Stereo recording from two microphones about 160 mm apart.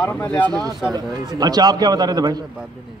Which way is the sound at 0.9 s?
25° right (ahead or behind).